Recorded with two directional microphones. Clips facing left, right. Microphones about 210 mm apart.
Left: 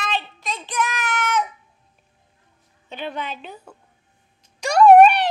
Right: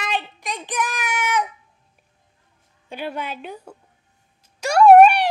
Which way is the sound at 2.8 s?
10° right (ahead or behind).